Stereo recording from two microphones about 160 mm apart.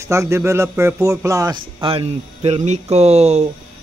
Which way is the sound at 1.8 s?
35° right (ahead or behind).